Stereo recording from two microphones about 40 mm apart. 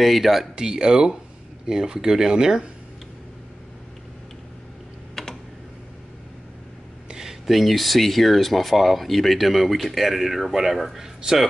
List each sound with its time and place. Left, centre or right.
0.0 s speech: centre
0.6 s speech: centre
7.1 s a sound: centre
7.4 s speech: centre